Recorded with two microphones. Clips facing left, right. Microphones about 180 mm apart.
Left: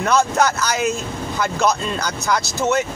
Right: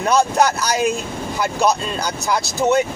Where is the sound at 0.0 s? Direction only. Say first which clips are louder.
Right 1 dB; 15° right (ahead or behind).